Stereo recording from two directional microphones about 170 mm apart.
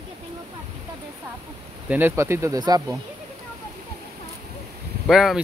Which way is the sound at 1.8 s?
10° right (ahead or behind).